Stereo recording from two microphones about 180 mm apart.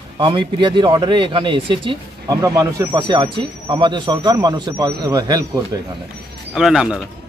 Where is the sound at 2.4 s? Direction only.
15° right (ahead or behind).